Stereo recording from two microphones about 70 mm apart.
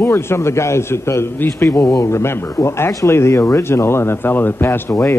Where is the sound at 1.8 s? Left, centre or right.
Left.